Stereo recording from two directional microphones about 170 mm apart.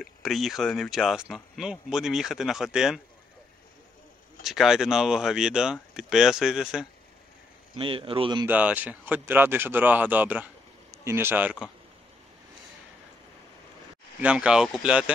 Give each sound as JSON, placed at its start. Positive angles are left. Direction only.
{"t": 0.0, "sound": "speech", "side_deg": 0}
{"t": 4.5, "sound": "speech", "side_deg": 0}
{"t": 7.7, "sound": "speech", "side_deg": -30}
{"t": 8.5, "sound": "speech", "side_deg": -10}
{"t": 14.2, "sound": "speech", "side_deg": -5}